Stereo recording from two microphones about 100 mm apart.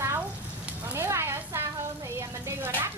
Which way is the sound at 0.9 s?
25° right (ahead or behind).